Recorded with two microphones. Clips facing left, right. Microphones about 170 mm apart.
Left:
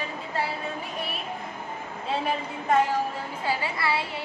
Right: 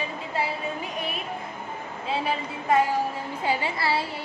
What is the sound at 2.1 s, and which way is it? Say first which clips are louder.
Speech: even; centre (ahead or behind).